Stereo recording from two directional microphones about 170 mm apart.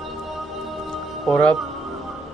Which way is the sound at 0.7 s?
Centre (ahead or behind).